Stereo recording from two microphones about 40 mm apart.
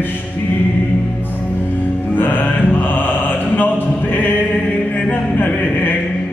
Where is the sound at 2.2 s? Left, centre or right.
Left.